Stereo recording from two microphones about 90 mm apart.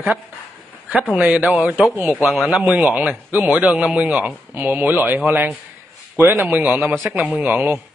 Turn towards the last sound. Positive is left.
turn(degrees=-20)  # may be behind; listen again after turning